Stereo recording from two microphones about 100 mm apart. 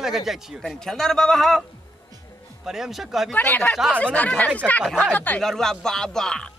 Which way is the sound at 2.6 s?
5° right (ahead or behind).